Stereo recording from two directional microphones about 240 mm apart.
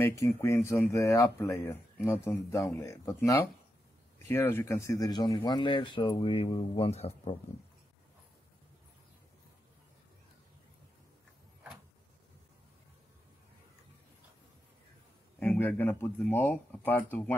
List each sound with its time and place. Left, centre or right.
0.0 s speech: centre
15.3 s speech: centre